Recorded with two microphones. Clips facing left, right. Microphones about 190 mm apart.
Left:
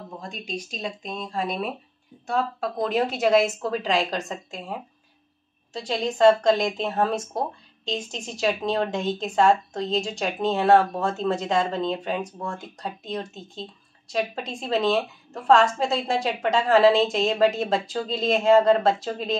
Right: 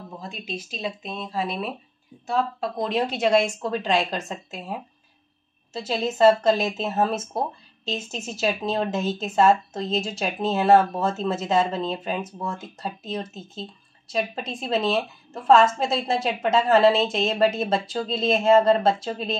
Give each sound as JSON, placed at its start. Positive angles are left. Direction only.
{"t": 0.2, "sound": "a woman's voice", "side_deg": -5}